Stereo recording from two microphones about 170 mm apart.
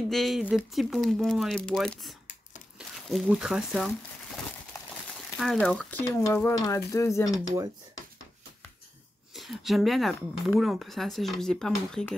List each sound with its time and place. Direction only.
0.1 s speech: centre (ahead or behind)
5.1 s a sound: centre (ahead or behind)
6.0 s stir: 15° left (ahead or behind)
9.3 s speech: centre (ahead or behind)